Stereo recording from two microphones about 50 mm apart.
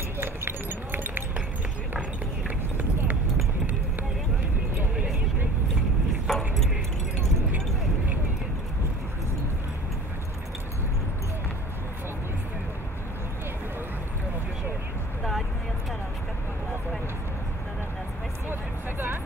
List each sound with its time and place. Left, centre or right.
0.2 s a sound: right
2.4 s clip-clop: right
6.2 s keys jangling: centre
18.5 s music: right